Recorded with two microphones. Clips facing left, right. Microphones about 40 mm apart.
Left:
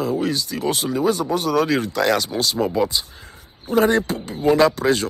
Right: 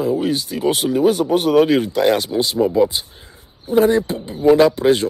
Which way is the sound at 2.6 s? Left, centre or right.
Left.